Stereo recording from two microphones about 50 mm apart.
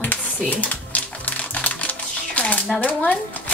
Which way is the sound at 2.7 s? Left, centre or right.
Left.